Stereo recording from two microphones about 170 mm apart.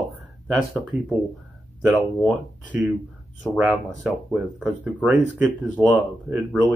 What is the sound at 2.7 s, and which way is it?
Speech, 10° right (ahead or behind).